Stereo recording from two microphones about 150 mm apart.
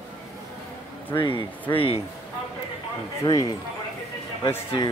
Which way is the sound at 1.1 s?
35° left (ahead or behind).